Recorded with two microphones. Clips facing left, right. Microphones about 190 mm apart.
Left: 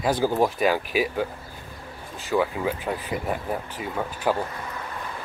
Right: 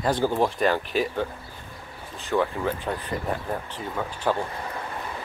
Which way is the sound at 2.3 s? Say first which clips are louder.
Left 1 dB; 5° left (ahead or behind).